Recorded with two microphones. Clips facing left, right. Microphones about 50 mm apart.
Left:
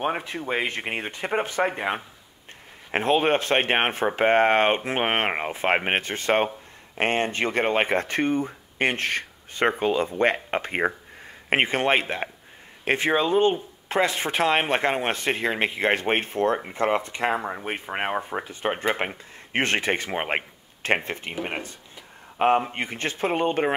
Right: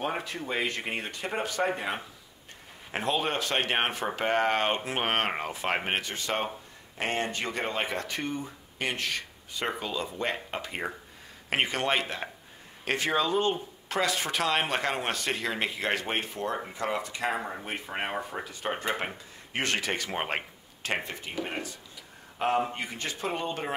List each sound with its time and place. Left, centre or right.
0.0 s speech: left
2.9 s speech: left
17.3 s speech: left
22.7 s speech: left